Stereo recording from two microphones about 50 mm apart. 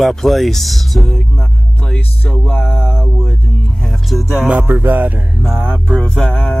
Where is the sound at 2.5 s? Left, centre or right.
Left.